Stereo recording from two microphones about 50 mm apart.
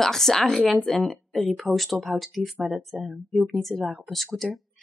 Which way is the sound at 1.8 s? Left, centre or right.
Centre.